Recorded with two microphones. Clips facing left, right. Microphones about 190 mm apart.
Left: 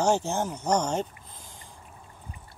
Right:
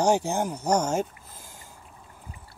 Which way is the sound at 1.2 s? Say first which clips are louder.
Right 1 dB; 5° right (ahead or behind).